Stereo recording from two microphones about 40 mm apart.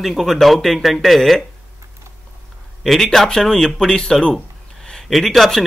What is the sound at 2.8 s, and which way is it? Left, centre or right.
Speech, centre.